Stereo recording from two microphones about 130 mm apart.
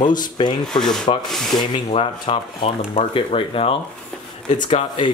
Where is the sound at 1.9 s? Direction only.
45° left (ahead or behind).